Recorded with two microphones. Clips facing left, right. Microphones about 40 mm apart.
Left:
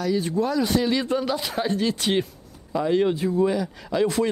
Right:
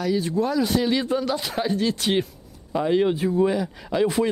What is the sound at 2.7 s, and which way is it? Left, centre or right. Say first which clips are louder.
Speech: right 1 dB; centre.